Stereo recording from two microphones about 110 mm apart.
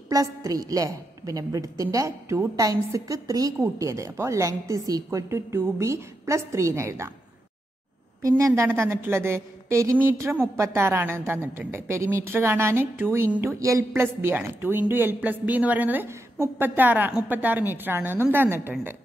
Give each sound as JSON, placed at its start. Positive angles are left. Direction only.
{"t": 0.1, "sound": "a woman's voice", "side_deg": -30}
{"t": 8.2, "sound": "a woman's voice", "side_deg": -30}
{"t": 14.0, "sound": "a woman's voice", "side_deg": -20}